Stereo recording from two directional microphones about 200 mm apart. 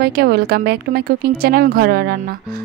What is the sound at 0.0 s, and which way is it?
Speech, 50° right (ahead or behind).